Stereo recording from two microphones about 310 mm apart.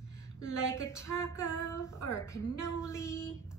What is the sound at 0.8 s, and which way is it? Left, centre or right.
A woman's voice, centre.